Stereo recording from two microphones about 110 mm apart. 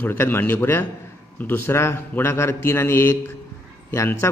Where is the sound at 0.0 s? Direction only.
20° left (ahead or behind).